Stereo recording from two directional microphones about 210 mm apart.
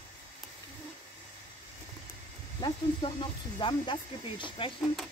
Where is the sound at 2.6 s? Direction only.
25° left (ahead or behind).